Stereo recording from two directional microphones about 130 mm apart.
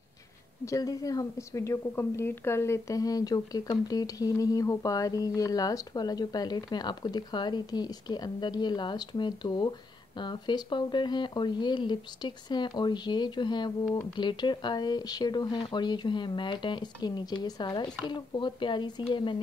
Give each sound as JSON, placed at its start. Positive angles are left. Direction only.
{"t": 0.7, "sound": "a woman's voice", "side_deg": 25}